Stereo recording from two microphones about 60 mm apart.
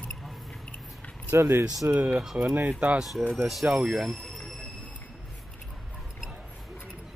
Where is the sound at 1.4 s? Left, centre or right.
Right.